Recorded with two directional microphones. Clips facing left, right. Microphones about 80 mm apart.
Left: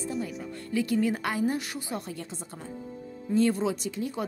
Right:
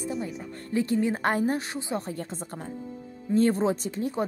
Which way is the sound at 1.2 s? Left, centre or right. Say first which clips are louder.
Right 3 dB; right.